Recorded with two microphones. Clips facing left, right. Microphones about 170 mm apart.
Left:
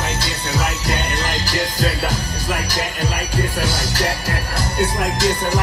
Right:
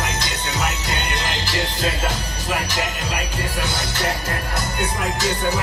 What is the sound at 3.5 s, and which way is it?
Music, 35° left (ahead or behind).